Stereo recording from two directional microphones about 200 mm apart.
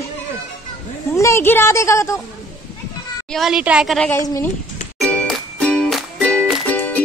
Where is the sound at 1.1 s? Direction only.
15° left (ahead or behind).